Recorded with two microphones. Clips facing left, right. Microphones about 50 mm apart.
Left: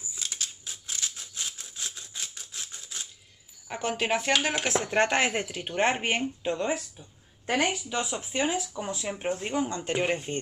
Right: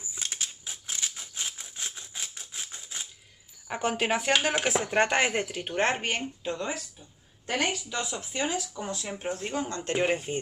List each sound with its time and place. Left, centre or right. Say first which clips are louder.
0.1 s scissors: right 1 dB; right
3.6 s speech: right 1 dB; centre
6.4 s speech: left 4 dB; left
9.9 s speech: right 2 dB; centre